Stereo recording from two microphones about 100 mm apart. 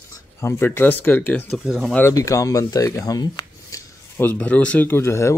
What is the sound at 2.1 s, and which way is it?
Speech, 35° left (ahead or behind).